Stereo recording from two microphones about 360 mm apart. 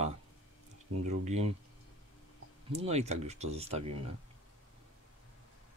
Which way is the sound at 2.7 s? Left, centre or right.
Centre.